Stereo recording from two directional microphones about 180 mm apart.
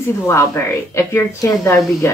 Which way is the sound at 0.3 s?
15° left (ahead or behind).